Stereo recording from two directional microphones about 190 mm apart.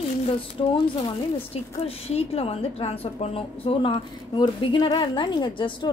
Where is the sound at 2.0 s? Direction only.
30° left (ahead or behind).